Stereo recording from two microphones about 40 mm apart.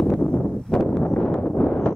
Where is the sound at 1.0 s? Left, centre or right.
Left.